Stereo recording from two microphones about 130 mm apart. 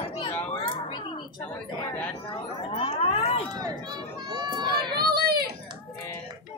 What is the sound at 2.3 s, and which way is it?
Speech, 45° left (ahead or behind).